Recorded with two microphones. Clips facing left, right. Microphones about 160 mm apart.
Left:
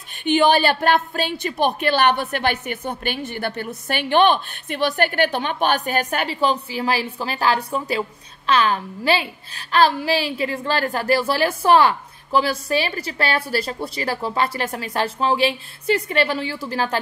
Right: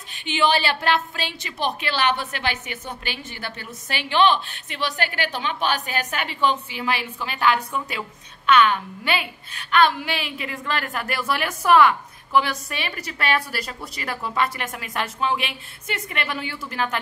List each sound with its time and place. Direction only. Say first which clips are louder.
0.2 s a woman's voice: left 5 dB; 50° left (ahead or behind)
6.2 s a woman's voice: left 2 dB; 35° left (ahead or behind)